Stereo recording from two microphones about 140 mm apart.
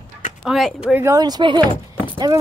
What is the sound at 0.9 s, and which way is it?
Speech, 25° right (ahead or behind).